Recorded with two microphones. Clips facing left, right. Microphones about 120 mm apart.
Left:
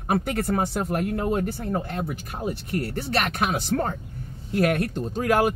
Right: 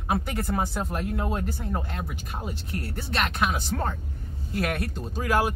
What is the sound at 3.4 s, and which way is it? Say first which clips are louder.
Speech: left 3 dB; 60° left (ahead or behind).